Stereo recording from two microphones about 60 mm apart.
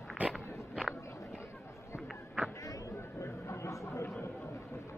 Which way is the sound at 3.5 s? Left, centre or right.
Left.